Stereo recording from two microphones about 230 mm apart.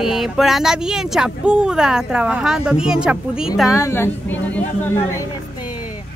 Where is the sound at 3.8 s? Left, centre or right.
Centre.